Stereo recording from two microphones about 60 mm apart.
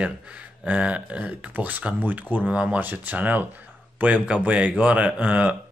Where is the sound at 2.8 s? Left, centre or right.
Right.